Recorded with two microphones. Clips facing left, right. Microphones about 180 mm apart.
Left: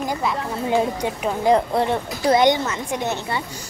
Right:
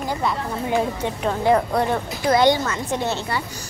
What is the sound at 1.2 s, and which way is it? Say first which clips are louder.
A woman's voice: even; 15° left (ahead or behind).